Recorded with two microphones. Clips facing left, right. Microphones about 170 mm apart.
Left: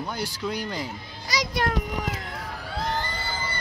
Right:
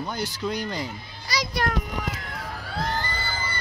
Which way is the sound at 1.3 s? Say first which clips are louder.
Left 1 dB; 20° left (ahead or behind).